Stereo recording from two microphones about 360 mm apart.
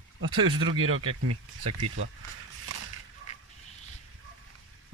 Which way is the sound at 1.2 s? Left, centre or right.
Right.